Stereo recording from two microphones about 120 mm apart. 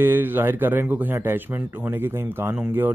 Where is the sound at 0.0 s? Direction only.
15° right (ahead or behind).